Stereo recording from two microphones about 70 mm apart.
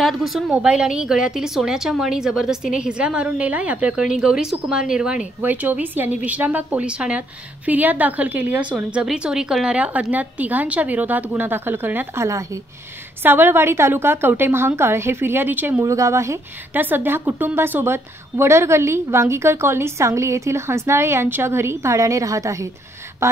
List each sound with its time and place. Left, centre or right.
0.0 s a woman's voice: centre; by 4.0 s right
4.0 s a woman's voice: centre
5.4 s a woman's voice: right; by 9.8 s centre
9.8 s a woman's voice: right
15.8 s speech: right
16.7 s a woman's voice: right